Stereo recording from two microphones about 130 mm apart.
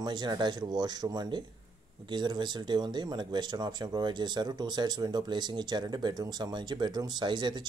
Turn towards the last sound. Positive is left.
turn(degrees=-35)  # may be behind; listen again after turning